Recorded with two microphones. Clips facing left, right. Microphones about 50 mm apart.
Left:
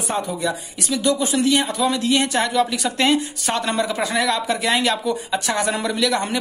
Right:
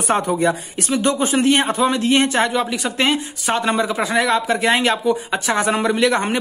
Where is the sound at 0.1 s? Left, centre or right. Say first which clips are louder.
Right 6 dB; right.